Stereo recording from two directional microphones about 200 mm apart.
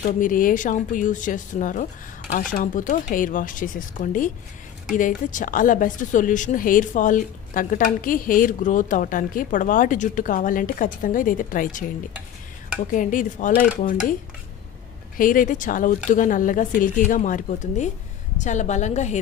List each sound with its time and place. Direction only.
0.0 s speech: 40° left (ahead or behind)
12.9 s speech: 40° left (ahead or behind)
15.1 s speech: 45° left (ahead or behind)